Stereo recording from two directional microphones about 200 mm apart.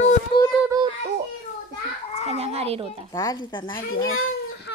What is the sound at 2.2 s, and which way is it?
Speech, 30° right (ahead or behind).